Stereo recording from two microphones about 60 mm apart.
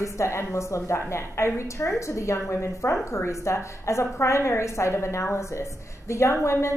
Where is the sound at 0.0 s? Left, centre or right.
Left.